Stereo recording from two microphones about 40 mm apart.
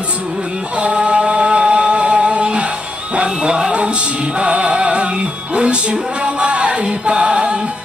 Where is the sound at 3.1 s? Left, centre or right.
Right.